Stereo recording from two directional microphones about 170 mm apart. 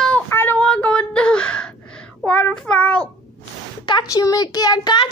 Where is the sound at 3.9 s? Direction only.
25° left (ahead or behind).